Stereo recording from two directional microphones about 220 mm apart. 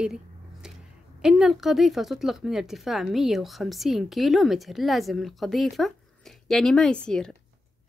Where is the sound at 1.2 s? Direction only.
Centre (ahead or behind).